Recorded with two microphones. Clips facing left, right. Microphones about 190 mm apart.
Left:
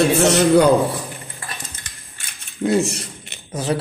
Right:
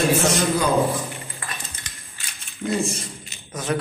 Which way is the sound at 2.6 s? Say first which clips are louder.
Left 6 dB; 65° left (ahead or behind).